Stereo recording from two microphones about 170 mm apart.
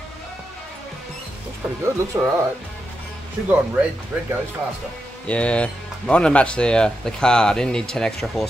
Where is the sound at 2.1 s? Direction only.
20° right (ahead or behind).